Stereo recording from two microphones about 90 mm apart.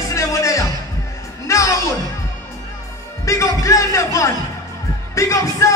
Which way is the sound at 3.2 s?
35° left (ahead or behind).